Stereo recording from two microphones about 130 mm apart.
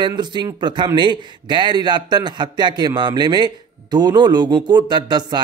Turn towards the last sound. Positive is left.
turn(degrees=-35)  # may be behind; listen again after turning